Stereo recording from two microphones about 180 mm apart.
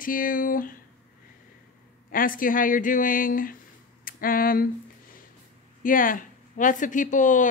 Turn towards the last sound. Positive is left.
turn(degrees=45)  # may be behind; listen again after turning